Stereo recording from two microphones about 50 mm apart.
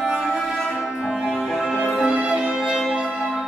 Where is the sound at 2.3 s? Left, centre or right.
Centre.